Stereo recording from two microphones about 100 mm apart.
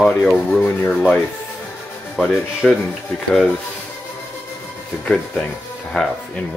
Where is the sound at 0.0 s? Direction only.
5° left (ahead or behind).